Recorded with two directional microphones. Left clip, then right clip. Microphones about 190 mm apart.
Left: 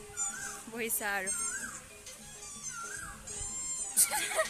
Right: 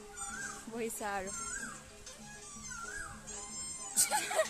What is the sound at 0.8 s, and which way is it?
Speech, 5° right (ahead or behind).